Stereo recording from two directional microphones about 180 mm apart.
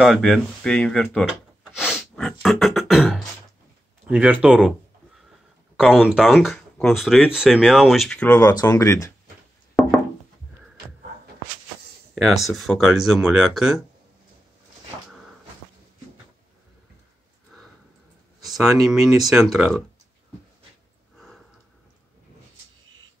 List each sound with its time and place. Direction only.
0.0 s speech: centre (ahead or behind)
1.8 s beatboxing: centre (ahead or behind)
4.1 s speech: 5° right (ahead or behind)
5.8 s speech: 5° right (ahead or behind); by 9.1 s 15° left (ahead or behind)
9.8 s a sound: 5° left (ahead or behind)
12.2 s speech: centre (ahead or behind)
18.4 s speech: centre (ahead or behind)